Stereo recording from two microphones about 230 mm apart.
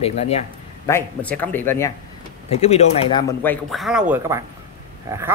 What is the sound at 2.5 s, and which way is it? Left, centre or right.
Speech, left.